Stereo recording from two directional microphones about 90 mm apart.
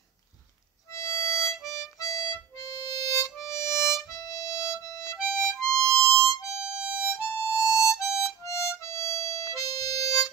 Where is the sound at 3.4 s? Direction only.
30° left (ahead or behind).